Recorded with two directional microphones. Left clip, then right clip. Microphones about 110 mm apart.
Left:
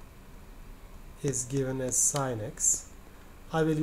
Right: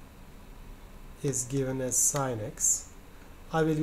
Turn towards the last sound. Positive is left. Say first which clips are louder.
# even
turn(degrees=10)  # may be behind; listen again after turning